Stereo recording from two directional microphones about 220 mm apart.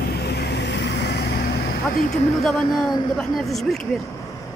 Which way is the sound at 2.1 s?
Centre (ahead or behind).